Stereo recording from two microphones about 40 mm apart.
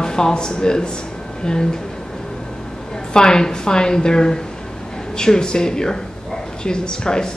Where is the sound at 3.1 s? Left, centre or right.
Centre.